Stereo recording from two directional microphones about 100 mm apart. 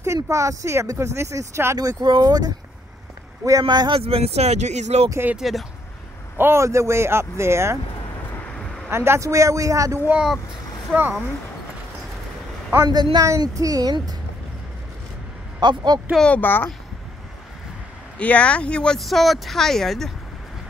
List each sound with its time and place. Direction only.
0.0 s speech: 30° right (ahead or behind)
1.9 s speech: 45° right (ahead or behind)
3.6 s speech: 45° right (ahead or behind)
4.0 s speech: 85° right
5.3 s speech: centre (ahead or behind)
6.3 s speech: 25° right (ahead or behind)
8.5 s a sound: 5° left (ahead or behind)
8.9 s speech: 25° right (ahead or behind)
12.7 s speech: 40° right (ahead or behind)
15.6 s speech: 50° right (ahead or behind)
16.1 s speech: 5° left (ahead or behind)
16.3 s a child's voice: 20° left (ahead or behind)
18.1 s speech: 10° left (ahead or behind)